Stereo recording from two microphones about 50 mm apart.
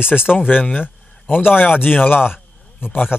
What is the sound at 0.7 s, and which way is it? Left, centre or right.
A man's voice, left.